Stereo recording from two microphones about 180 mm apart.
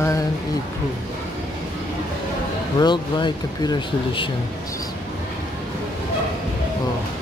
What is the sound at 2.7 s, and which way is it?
Speech, 25° left (ahead or behind).